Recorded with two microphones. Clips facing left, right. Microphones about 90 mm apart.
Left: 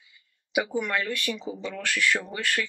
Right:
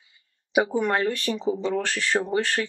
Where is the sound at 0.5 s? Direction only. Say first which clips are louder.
Right 5 dB; 35° right (ahead or behind).